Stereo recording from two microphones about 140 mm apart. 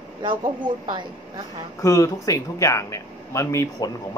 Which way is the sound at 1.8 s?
25° left (ahead or behind).